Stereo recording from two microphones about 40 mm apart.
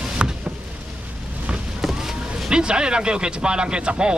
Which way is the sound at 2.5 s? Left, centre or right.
Right.